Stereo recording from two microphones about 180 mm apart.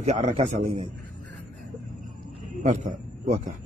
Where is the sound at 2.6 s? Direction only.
45° right (ahead or behind).